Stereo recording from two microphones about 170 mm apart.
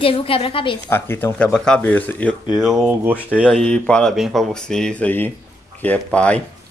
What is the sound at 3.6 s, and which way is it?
Speech, 5° left (ahead or behind).